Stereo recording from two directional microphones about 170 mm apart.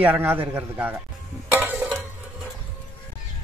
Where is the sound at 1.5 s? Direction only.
10° right (ahead or behind).